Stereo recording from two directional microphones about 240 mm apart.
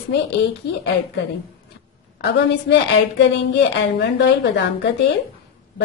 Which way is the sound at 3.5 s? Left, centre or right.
Left.